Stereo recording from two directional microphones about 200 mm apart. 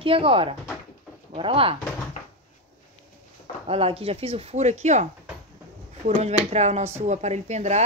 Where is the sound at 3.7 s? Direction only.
30° right (ahead or behind).